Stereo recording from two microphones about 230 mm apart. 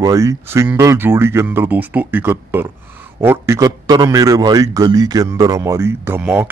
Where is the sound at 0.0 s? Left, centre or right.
Centre.